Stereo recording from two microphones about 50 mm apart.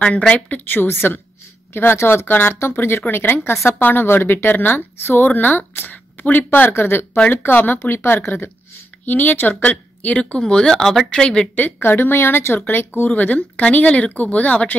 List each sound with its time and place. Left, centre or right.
0.5 s a woman's voice: left
6.7 s a woman's voice: left
7.2 s a woman's voice: left
9.0 s speech: left
10.4 s speech: centre
11.5 s a woman's voice: left
13.0 s speech: left